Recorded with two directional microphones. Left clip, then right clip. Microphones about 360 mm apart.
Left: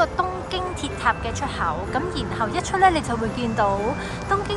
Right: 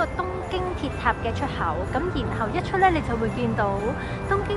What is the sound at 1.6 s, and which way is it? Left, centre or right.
Speech, centre.